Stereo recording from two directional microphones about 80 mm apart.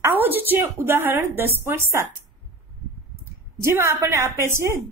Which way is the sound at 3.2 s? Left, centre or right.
Right.